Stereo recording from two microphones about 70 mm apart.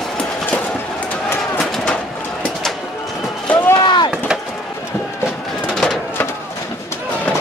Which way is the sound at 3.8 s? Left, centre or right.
Left.